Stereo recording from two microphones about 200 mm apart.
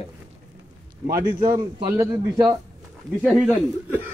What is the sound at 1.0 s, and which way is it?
A man's voice, 15° right (ahead or behind).